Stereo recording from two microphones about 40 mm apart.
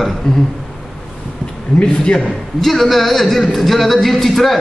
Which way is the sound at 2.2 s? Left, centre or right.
Centre.